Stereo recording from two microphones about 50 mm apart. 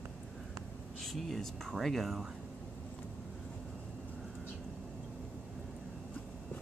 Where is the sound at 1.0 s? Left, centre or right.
Centre.